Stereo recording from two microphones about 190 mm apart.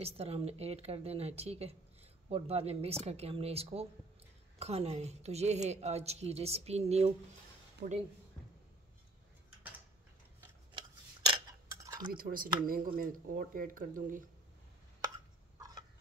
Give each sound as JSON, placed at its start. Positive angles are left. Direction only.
{"t": 0.0, "sound": "a woman's voice", "side_deg": -30}
{"t": 7.8, "sound": "speech", "side_deg": -55}
{"t": 10.7, "sound": "a sound", "side_deg": -25}
{"t": 12.1, "sound": "speech", "side_deg": -50}